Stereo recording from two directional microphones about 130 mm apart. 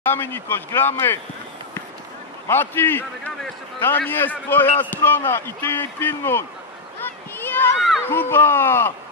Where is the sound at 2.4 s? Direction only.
15° left (ahead or behind).